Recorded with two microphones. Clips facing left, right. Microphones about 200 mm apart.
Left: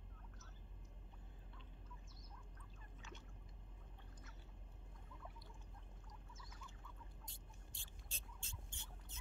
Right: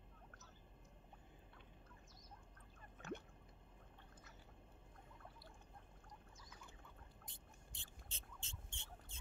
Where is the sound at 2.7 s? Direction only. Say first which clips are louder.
Right 11 dB; 55° right (ahead or behind).